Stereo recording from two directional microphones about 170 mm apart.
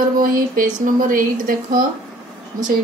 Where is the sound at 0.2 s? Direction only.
55° right (ahead or behind).